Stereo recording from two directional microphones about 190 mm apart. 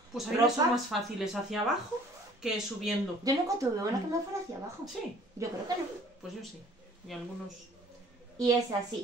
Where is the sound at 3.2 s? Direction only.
20° right (ahead or behind).